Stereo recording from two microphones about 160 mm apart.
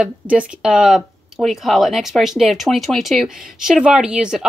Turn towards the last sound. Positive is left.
turn(degrees=-5)  # may be behind; listen again after turning